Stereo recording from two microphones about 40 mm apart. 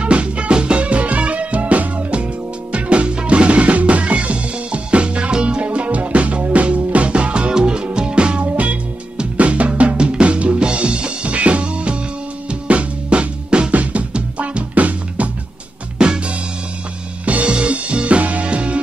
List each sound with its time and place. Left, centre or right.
0.0 s music: right
8.5 s music: right
9.2 s drum kit: right
12.4 s music: right
16.0 s music: centre
17.2 s music: right